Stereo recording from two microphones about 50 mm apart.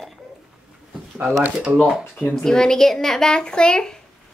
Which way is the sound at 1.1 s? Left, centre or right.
Right.